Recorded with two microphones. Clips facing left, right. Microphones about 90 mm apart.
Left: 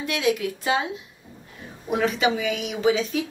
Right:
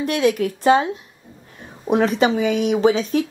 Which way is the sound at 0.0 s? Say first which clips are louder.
Right 5 dB; 45° right (ahead or behind).